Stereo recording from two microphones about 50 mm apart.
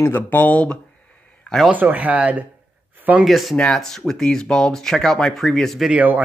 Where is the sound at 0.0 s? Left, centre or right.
Left.